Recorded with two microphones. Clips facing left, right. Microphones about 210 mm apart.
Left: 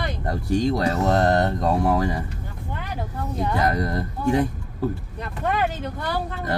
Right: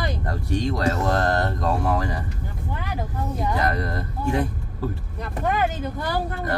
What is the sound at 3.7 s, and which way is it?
Speech, 20° left (ahead or behind).